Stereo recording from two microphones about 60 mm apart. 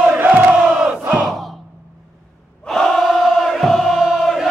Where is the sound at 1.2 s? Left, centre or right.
Centre.